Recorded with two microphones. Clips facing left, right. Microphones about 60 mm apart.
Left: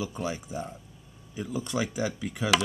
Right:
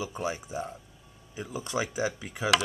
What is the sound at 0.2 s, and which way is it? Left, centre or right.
Speech, centre.